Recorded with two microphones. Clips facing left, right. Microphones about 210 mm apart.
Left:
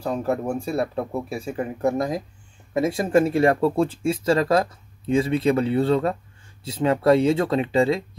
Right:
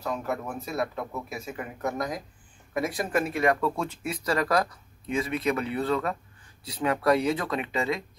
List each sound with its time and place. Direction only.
0.0 s speech: 30° left (ahead or behind)